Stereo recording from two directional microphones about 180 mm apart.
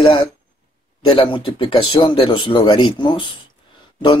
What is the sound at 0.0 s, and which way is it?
Speech, 30° left (ahead or behind).